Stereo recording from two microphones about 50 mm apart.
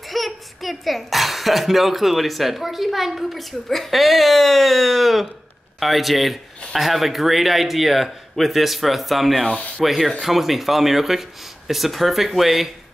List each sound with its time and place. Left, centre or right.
0.1 s speech: centre